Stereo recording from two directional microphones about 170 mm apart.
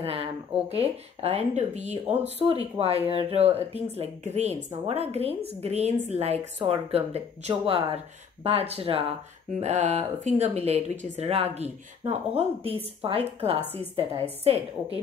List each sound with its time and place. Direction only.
0.0 s speech: 35° right (ahead or behind)